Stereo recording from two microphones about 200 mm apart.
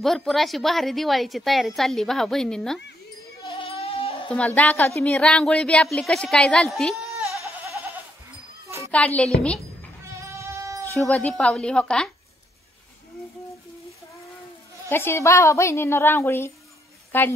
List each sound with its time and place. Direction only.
0.0 s a woman's voice: centre (ahead or behind)
3.6 s goat: 30° left (ahead or behind)
4.3 s a woman's voice: 5° left (ahead or behind)
8.6 s a sound: 15° right (ahead or behind)
8.9 s a woman's voice: 5° left (ahead or behind)
10.2 s sheep: 15° right (ahead or behind)
11.0 s a woman's voice: 10° left (ahead or behind)
14.9 s a woman's voice: 10° left (ahead or behind)